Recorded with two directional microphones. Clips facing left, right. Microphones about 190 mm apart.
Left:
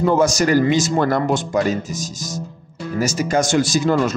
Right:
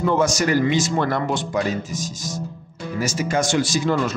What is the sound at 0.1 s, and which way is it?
Speech, 40° left (ahead or behind).